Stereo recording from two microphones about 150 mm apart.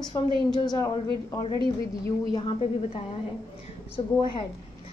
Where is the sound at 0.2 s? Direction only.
20° left (ahead or behind).